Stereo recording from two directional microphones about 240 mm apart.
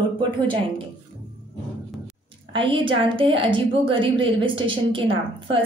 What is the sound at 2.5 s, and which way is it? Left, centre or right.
A woman's voice, right.